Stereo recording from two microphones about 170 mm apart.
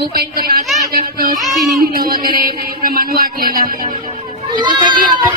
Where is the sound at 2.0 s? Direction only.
60° right (ahead or behind).